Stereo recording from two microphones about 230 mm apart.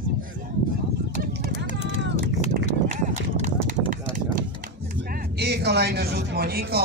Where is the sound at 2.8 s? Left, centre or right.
Right.